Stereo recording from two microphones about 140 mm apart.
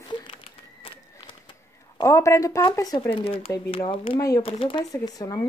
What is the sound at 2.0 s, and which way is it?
Speech, 20° left (ahead or behind).